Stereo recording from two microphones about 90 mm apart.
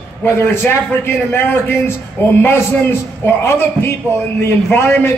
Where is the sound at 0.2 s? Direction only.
25° left (ahead or behind).